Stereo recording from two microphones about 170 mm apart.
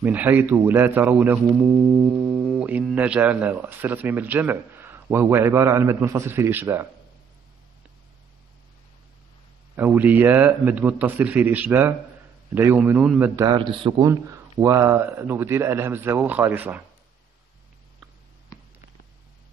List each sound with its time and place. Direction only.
0.0 s speech: 10° right (ahead or behind)
9.8 s speech: 10° right (ahead or behind)
13.4 s a man's voice: 25° right (ahead or behind)
13.9 s speech: 15° right (ahead or behind)